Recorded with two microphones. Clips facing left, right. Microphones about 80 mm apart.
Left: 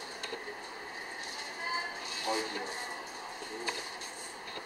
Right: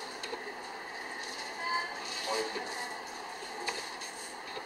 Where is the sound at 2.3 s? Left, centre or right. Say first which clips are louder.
Even; left.